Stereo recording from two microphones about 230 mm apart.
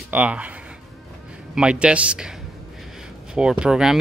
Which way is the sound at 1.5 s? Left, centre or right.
Centre.